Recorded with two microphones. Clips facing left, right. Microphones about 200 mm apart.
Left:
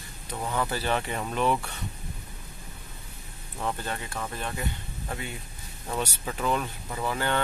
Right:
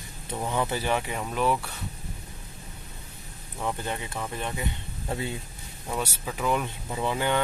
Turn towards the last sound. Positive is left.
turn(degrees=-15)  # may be behind; listen again after turning